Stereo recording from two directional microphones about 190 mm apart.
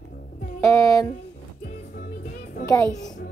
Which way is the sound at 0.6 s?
15° left (ahead or behind).